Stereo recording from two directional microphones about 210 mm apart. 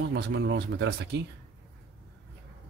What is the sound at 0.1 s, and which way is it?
Speech, 55° right (ahead or behind).